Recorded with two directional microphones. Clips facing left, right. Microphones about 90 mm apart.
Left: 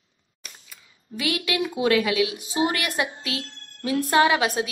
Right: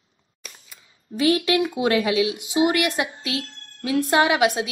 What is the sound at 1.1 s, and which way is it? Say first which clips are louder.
A woman's voice: right 7 dB; 30° right (ahead or behind).